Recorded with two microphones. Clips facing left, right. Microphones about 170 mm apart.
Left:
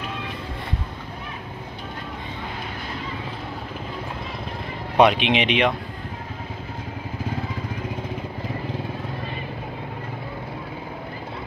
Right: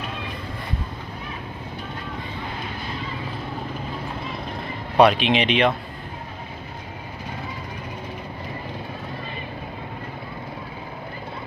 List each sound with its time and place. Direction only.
4.9 s speech: 20° left (ahead or behind)